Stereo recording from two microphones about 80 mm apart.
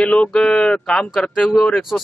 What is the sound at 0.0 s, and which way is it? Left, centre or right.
Speech, centre.